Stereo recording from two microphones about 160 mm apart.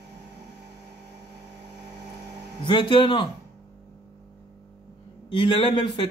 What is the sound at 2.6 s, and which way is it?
Speech, 30° left (ahead or behind).